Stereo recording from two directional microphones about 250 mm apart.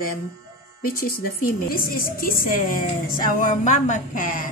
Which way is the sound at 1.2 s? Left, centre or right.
Left.